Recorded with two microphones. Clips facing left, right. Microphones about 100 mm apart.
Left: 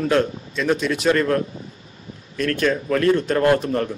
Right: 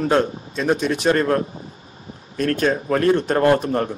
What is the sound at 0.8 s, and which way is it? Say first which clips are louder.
A man's voice: even; 45° right (ahead or behind).